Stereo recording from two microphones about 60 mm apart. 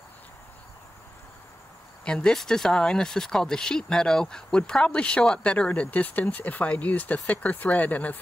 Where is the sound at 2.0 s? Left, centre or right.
Centre.